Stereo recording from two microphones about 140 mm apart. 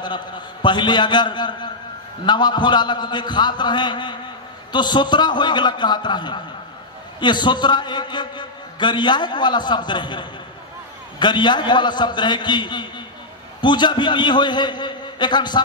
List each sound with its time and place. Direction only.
0.0 s a man's voice: 35° left (ahead or behind)